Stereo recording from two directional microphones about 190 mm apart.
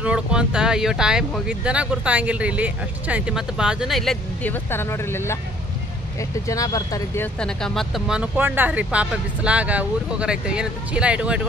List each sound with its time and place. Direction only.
0.0 s speech: 5° right (ahead or behind); by 5.4 s 15° left (ahead or behind)
6.4 s speech: 20° left (ahead or behind)
7.3 s speech: 5° left (ahead or behind)